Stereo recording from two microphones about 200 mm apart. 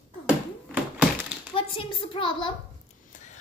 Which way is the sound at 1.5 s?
25° left (ahead or behind).